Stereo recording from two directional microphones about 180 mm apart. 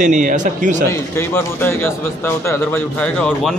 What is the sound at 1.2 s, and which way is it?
Speech, 10° left (ahead or behind).